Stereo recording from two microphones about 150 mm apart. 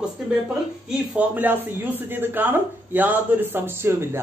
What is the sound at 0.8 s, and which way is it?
A man's voice, 10° right (ahead or behind).